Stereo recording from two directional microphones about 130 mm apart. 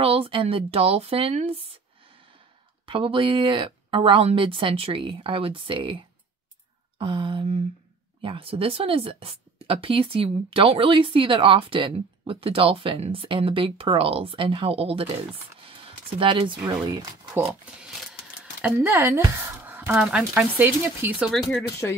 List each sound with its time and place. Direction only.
0.0 s speech: 45° right (ahead or behind)
2.9 s a woman's voice: 40° right (ahead or behind)
15.6 s a sound: 45° right (ahead or behind)
17.4 s speech: 5° right (ahead or behind)
18.6 s speech: 15° right (ahead or behind)